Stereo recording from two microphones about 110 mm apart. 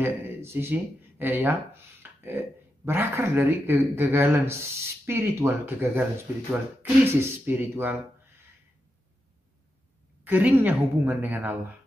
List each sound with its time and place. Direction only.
0.0 s speech: 20° right (ahead or behind)
10.2 s a woman's voice: 15° right (ahead or behind)